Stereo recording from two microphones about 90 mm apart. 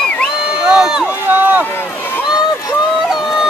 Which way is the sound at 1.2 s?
20° right (ahead or behind).